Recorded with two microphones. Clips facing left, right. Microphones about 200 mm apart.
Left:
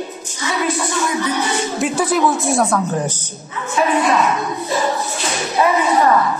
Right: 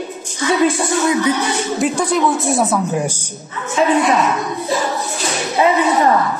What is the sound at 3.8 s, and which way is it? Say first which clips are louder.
Speech: right 3 dB; 25° right (ahead or behind).